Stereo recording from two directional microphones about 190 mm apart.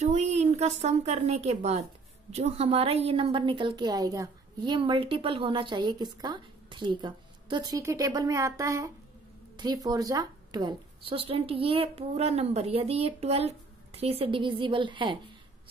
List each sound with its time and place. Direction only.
0.0 s a woman's voice: 35° right (ahead or behind)